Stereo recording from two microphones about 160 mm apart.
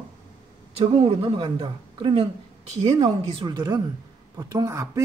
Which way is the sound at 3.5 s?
25° right (ahead or behind).